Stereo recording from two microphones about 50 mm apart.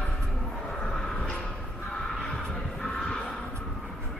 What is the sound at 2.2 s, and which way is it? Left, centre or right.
Music, centre.